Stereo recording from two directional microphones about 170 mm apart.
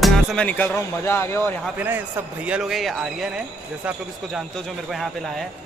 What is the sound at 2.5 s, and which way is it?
Speech, 5° right (ahead or behind).